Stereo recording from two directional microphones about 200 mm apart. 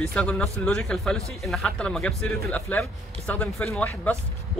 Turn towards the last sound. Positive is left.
turn(degrees=5)  # may be behind; listen again after turning